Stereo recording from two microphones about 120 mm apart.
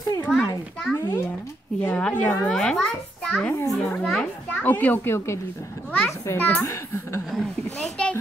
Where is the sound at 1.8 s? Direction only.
10° left (ahead or behind).